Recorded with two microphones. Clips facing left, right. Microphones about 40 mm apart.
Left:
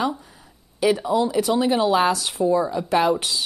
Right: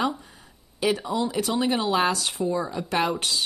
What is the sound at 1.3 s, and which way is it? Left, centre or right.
Speech, centre.